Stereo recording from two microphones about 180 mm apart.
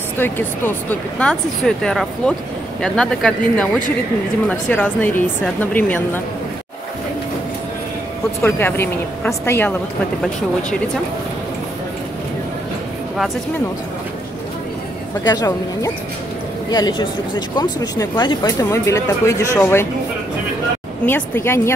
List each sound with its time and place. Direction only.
1.2 s speech: 5° left (ahead or behind)
8.4 s speech: 15° left (ahead or behind)
15.2 s speech: 20° left (ahead or behind)
21.0 s speech: 10° left (ahead or behind)